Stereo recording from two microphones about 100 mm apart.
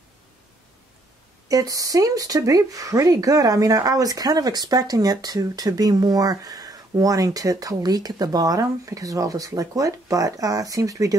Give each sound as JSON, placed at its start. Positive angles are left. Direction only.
{"t": 1.5, "sound": "speech", "side_deg": -35}